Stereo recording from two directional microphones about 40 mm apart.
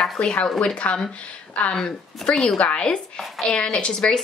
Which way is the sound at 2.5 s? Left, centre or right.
Left.